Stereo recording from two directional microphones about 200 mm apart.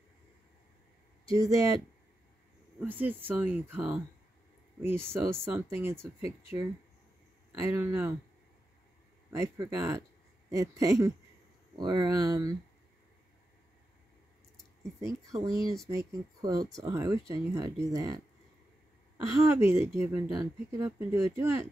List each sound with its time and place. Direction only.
1.3 s speech: 15° right (ahead or behind)
2.8 s speech: 10° right (ahead or behind)
9.3 s speech: 15° right (ahead or behind)
16.1 s speech: 20° right (ahead or behind)
19.2 s speech: 15° right (ahead or behind)